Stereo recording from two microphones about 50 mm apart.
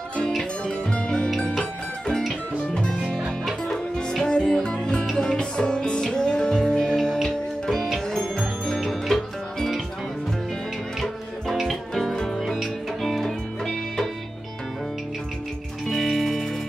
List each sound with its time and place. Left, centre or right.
0.9 s music: centre
2.7 s music: left; by 9.8 s centre
11.6 s music: centre
15.9 s music: centre